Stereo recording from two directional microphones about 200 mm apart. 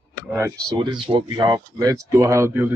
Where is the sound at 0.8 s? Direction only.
25° right (ahead or behind).